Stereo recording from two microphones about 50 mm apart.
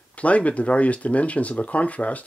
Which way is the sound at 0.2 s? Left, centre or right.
Left.